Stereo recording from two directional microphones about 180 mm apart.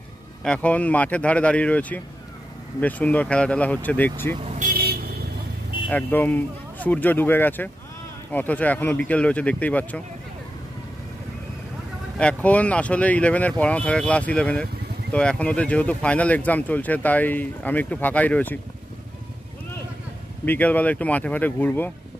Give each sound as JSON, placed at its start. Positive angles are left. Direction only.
{"t": 0.4, "sound": "speech", "side_deg": 5}
{"t": 4.6, "sound": "vehicle", "side_deg": -50}
{"t": 5.9, "sound": "speech", "side_deg": 10}
{"t": 12.2, "sound": "speech", "side_deg": 5}
{"t": 20.4, "sound": "speech", "side_deg": 10}